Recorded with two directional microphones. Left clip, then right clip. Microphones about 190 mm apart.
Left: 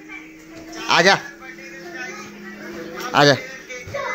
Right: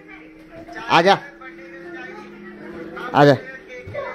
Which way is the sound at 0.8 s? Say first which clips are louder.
Even; 5° right (ahead or behind).